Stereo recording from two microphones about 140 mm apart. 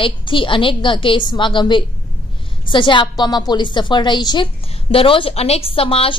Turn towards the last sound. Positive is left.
turn(degrees=45)  # may be behind; listen again after turning